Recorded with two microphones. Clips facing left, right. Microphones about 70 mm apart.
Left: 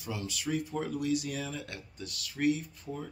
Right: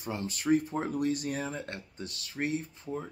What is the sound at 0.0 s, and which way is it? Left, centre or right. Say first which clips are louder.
Speech: right 3 dB; right.